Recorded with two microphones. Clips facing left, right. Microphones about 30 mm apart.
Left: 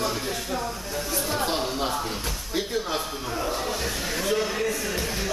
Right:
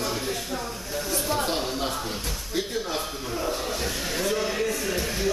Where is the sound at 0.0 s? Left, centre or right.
Centre.